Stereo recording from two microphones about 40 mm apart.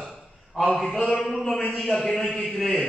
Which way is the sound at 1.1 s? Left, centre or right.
Centre.